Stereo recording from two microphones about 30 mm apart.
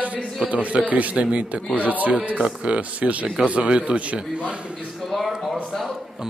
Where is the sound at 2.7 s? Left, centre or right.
Right.